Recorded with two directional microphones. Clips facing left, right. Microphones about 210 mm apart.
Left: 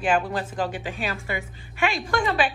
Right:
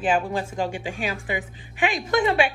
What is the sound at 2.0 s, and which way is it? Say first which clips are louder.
Speech: right 6 dB; 20° right (ahead or behind).